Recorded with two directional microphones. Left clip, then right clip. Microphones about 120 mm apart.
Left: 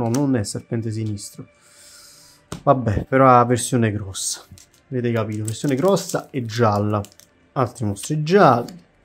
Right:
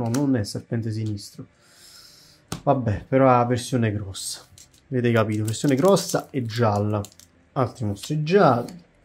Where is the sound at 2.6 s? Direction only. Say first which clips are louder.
Left 5 dB; 40° left (ahead or behind).